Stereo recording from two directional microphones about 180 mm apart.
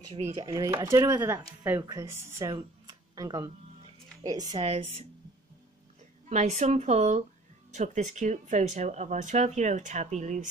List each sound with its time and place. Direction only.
0.1 s speech: 35° right (ahead or behind)
0.4 s speech: 20° right (ahead or behind)
2.5 s a sound: 20° right (ahead or behind)
4.2 s speech: 20° right (ahead or behind)
4.6 s speech: 35° right (ahead or behind)
6.2 s speech: 40° right (ahead or behind)